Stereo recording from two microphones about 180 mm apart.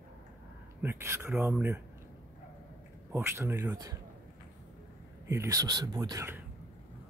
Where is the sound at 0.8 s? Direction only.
15° right (ahead or behind).